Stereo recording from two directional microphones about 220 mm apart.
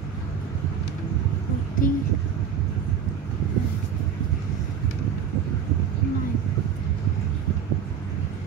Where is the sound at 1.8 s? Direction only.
40° left (ahead or behind).